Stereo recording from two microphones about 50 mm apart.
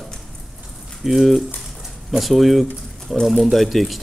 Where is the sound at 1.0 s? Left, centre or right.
Centre.